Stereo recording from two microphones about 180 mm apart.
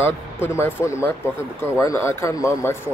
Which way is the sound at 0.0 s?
15° left (ahead or behind).